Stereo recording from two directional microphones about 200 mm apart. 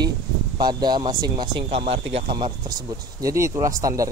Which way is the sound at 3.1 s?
15° right (ahead or behind).